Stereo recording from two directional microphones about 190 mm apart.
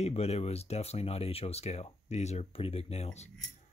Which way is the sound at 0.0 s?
35° left (ahead or behind).